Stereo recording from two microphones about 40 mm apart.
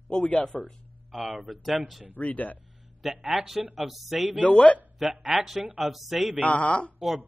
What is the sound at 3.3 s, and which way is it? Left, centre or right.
Speech, centre.